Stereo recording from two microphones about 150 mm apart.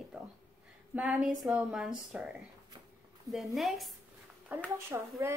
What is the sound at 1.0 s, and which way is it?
Speech, 5° right (ahead or behind).